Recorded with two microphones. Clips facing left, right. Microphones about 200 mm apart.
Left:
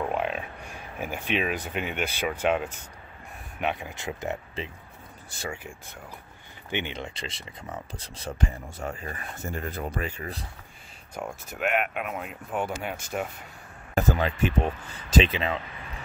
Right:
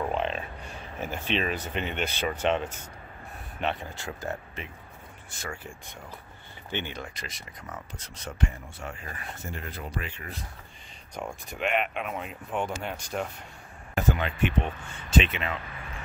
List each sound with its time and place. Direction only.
0.0 s speech: 10° left (ahead or behind)
5.3 s speech: 35° left (ahead or behind)
6.7 s speech: 20° left (ahead or behind); by 10.4 s 40° left (ahead or behind)
11.1 s speech: 5° left (ahead or behind)
13.9 s speech: 40° left (ahead or behind)